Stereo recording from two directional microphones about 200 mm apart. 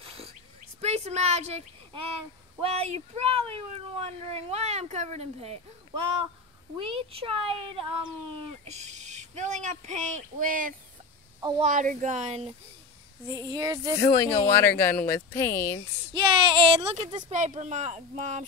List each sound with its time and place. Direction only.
0.0 s bird: 30° right (ahead or behind)
0.7 s a woman's voice: 30° right (ahead or behind)
6.8 s speech: 30° right (ahead or behind)
13.3 s speech: 20° right (ahead or behind)
13.9 s speech: 15° left (ahead or behind)
16.1 s speech: 25° right (ahead or behind)